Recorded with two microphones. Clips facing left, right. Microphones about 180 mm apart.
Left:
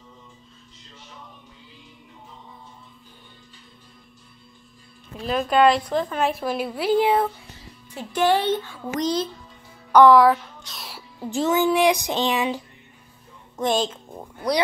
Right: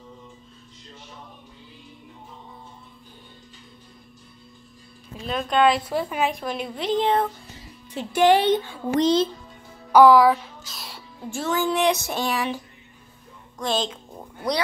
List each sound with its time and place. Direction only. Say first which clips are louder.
5.2 s speech: left 2 dB; 5° left (ahead or behind)
6.3 s speech: left 3 dB; 5° left (ahead or behind)
8.1 s a child's voice: right 3 dB; 15° right (ahead or behind)
9.9 s speech: even; centre (ahead or behind)
11.2 s speech: left 4 dB; 20° left (ahead or behind)
13.6 s a child's voice: left 4 dB; 25° left (ahead or behind)